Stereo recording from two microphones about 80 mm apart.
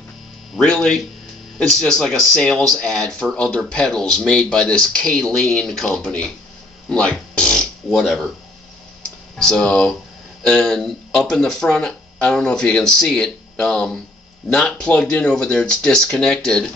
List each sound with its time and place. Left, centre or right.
0.6 s a man's voice: centre
6.9 s music: centre
7.5 s a sound: centre
9.4 s speech: centre